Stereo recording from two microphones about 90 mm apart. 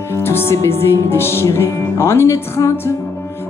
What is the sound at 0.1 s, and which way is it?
Music, 25° left (ahead or behind).